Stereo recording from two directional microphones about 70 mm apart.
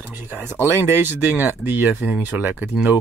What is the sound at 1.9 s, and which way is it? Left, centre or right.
Speech, centre.